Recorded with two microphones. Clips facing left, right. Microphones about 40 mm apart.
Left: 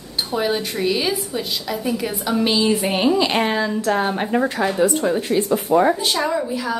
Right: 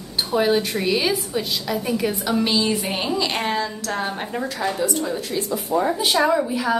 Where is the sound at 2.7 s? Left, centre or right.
Centre.